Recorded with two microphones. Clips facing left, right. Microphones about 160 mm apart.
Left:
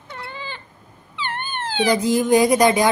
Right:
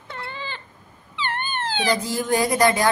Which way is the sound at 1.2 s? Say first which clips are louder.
Right 1 dB; 10° left (ahead or behind).